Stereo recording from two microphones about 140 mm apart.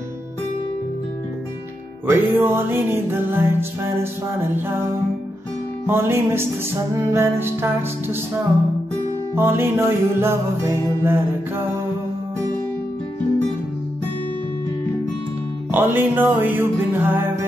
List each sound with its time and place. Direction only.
2.0 s music: 15° right (ahead or behind)
5.9 s music: 15° right (ahead or behind)
9.3 s music: 15° right (ahead or behind)
15.7 s music: 15° right (ahead or behind)